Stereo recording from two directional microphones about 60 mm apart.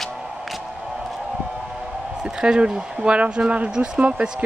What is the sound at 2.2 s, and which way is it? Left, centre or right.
Speech, centre.